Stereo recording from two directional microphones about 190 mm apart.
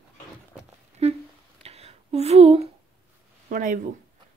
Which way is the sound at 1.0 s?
30° right (ahead or behind).